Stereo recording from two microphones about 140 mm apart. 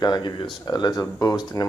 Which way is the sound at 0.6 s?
30° left (ahead or behind).